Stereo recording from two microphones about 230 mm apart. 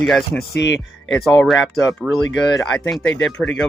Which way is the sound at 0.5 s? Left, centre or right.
Left.